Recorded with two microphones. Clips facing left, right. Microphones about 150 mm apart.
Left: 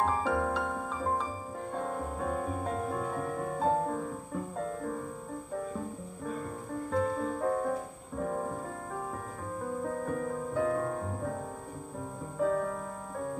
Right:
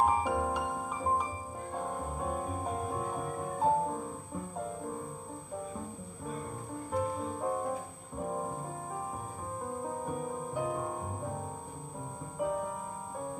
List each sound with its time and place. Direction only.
0.0 s music: 15° right (ahead or behind)
6.9 s music: 15° right (ahead or behind)
9.8 s music: 15° right (ahead or behind)
12.4 s music: 15° right (ahead or behind)